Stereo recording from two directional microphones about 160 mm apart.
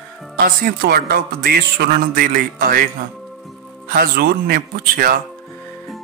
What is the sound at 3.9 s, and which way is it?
A man's voice, 65° right (ahead or behind).